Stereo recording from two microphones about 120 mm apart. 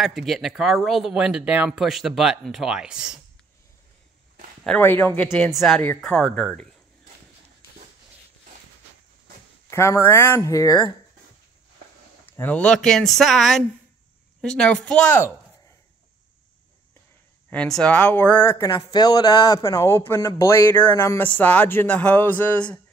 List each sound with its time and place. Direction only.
0.0 s speech: centre (ahead or behind)
4.6 s speech: 15° left (ahead or behind)
5.5 s speech: centre (ahead or behind)
9.7 s speech: 25° left (ahead or behind)
12.4 s speech: 10° left (ahead or behind)
17.5 s speech: 5° left (ahead or behind)
18.7 s speech: 35° left (ahead or behind); by 22.8 s 15° left (ahead or behind)